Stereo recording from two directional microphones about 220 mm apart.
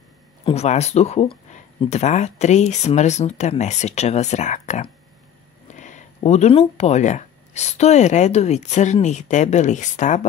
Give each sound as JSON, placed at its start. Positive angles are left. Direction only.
{"t": 0.5, "sound": "speech", "side_deg": 30}